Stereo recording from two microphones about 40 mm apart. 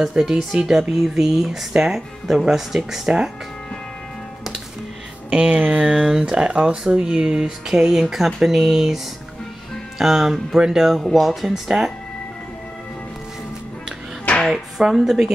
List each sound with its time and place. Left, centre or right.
0.2 s speech: centre
5.3 s speech: right
5.9 s speech: centre
14.5 s speech: centre